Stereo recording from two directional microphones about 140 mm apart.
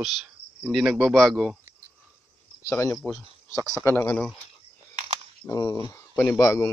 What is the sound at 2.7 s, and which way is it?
Speech, 15° left (ahead or behind).